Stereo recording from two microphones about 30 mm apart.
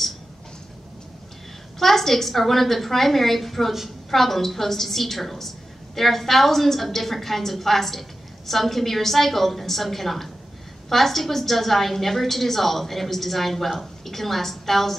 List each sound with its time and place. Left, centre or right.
1.8 s a woman's voice: centre